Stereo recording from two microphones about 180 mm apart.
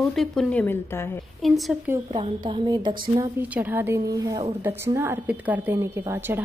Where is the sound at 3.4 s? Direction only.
10° right (ahead or behind).